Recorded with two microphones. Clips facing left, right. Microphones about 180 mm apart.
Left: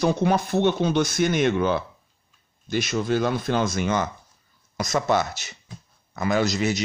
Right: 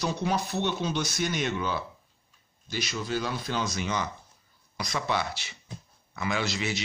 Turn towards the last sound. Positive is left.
turn(degrees=40)  # may be behind; listen again after turning